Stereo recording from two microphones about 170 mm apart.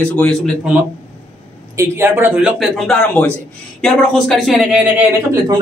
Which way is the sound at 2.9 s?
5° left (ahead or behind).